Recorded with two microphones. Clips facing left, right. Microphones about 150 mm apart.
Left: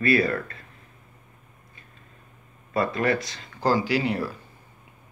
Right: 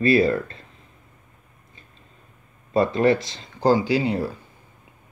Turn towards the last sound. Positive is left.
turn(degrees=-25)  # may be behind; listen again after turning